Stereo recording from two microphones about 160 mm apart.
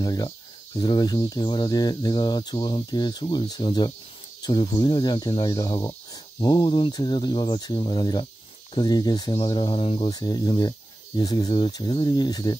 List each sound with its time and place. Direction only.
0.0 s speech: 25° left (ahead or behind)